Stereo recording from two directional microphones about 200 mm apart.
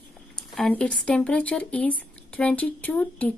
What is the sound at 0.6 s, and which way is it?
A woman's voice, 5° left (ahead or behind).